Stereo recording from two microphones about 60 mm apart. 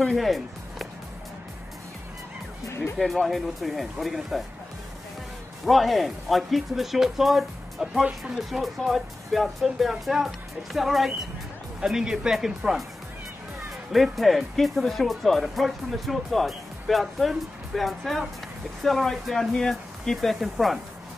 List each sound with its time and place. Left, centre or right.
0.1 s speech: centre
2.6 s music: left
3.0 s speech: centre
5.7 s speech: centre
13.9 s speech: centre